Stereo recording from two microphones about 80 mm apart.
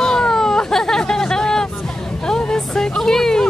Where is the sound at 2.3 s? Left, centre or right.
Centre.